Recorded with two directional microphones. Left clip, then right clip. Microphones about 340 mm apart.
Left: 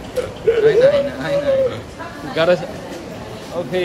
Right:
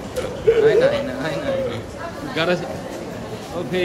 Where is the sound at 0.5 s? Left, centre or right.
Centre.